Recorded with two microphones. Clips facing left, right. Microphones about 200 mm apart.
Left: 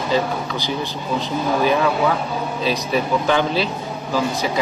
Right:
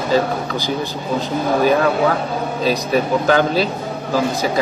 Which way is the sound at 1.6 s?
45° right (ahead or behind).